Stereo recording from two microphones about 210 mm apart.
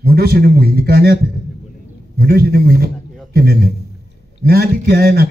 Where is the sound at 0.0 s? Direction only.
45° right (ahead or behind).